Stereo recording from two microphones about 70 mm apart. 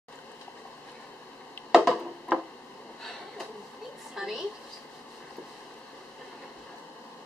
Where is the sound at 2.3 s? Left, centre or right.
Left.